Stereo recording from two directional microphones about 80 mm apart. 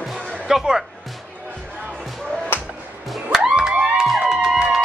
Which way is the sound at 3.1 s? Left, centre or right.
Centre.